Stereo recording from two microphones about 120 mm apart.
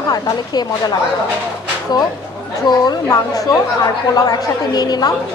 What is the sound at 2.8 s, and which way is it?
Speech, 30° left (ahead or behind).